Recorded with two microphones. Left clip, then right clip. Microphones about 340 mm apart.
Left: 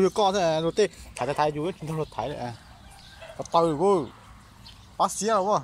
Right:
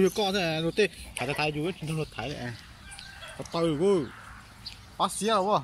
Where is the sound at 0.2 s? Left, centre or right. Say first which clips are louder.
Left 5 dB; centre.